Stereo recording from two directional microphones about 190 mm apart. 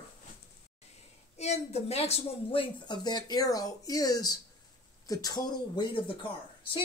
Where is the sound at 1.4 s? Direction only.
35° left (ahead or behind).